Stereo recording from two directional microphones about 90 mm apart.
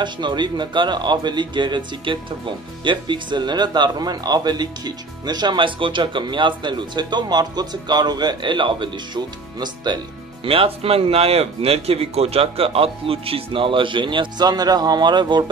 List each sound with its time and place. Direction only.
0.0 s speech: 60° right (ahead or behind)
10.4 s speech: 90° right; by 14.5 s 65° right (ahead or behind)
14.5 s speech: 45° right (ahead or behind)